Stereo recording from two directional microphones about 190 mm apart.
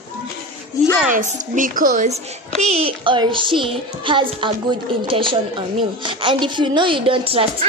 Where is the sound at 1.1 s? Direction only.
45° right (ahead or behind).